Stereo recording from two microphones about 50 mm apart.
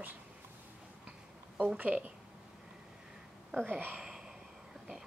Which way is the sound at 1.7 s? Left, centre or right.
Right.